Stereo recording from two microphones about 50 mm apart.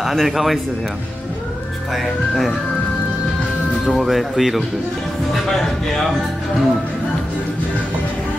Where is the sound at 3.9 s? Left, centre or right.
Centre.